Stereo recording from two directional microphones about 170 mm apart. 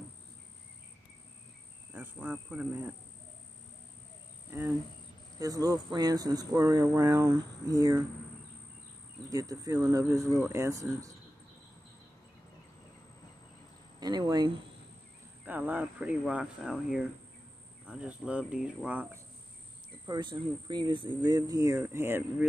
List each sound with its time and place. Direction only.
1.9 s speech: 10° right (ahead or behind)
4.5 s speech: 15° right (ahead or behind)
9.3 s speech: 20° right (ahead or behind)
13.9 s speech: 25° right (ahead or behind)
15.4 s speech: 10° right (ahead or behind)
20.1 s speech: 25° right (ahead or behind)